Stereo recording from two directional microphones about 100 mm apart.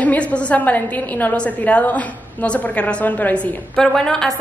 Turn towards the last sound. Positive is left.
turn(degrees=5)  # may be behind; listen again after turning